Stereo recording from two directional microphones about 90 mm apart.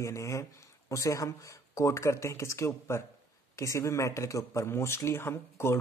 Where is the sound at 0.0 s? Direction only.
35° left (ahead or behind).